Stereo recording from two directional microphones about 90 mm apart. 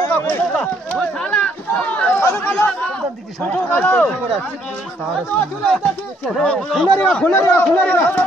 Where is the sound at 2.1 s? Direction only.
25° left (ahead or behind).